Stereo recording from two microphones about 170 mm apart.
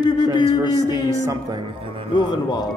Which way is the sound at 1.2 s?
20° right (ahead or behind).